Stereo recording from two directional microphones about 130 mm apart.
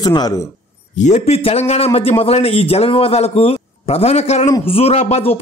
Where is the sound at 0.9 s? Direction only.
65° left (ahead or behind).